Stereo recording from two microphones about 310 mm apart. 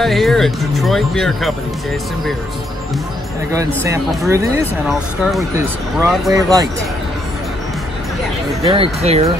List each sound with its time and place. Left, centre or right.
0.0 s speech: centre
3.5 s speech: centre
6.3 s speech: centre
8.6 s speech: centre